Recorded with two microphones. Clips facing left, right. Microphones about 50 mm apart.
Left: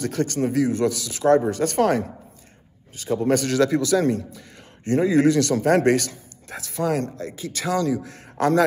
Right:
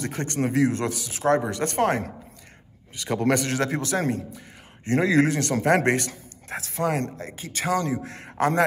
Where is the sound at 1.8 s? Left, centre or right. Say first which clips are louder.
Left 2 dB; right.